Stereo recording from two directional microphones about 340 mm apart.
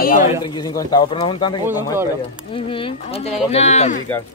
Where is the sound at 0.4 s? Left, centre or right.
Centre.